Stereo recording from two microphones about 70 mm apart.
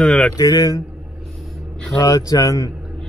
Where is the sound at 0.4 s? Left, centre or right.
Left.